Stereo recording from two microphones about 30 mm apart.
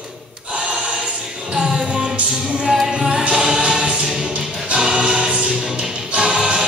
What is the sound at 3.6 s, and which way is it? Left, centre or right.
Choir, right.